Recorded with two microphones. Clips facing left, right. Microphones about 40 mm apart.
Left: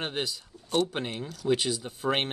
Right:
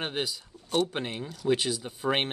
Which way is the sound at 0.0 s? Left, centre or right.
Centre.